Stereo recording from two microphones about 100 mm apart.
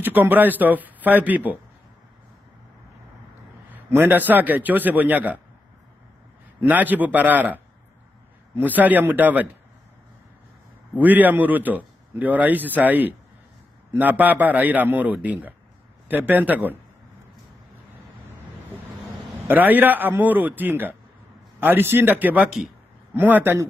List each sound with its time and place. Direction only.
0.0 s a man's voice: 20° right (ahead or behind)
3.7 s a man's voice: 20° right (ahead or behind)
6.6 s a man's voice: 15° right (ahead or behind)
11.0 s a man's voice: 15° right (ahead or behind)
19.4 s a man's voice: 20° right (ahead or behind)